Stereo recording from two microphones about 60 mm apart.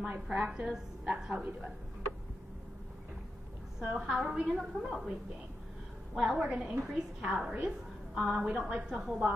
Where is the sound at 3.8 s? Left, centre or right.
Centre.